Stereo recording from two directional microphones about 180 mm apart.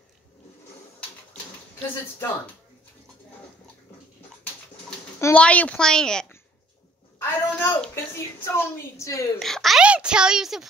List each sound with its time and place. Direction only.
5.2 s speech: 5° left (ahead or behind)
7.2 s a sound: 10° left (ahead or behind)
8.5 s a woman's voice: 15° left (ahead or behind)
9.4 s a child's voice: centre (ahead or behind)